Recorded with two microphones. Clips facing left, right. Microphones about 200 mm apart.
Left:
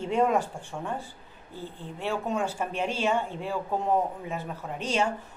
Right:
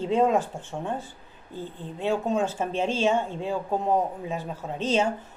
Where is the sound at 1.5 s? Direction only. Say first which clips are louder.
Right 3 dB; 20° right (ahead or behind).